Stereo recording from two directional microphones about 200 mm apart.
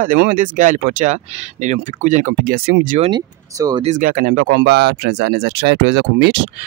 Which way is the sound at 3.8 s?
40° right (ahead or behind).